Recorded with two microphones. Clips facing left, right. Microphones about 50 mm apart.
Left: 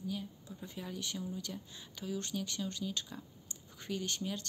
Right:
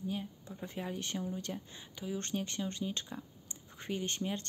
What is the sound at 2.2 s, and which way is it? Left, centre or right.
Speech, right.